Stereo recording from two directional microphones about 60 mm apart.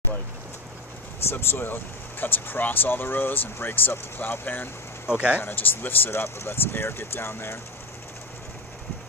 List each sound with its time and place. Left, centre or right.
1.3 s speech: left
5.1 s speech: right
5.4 s speech: left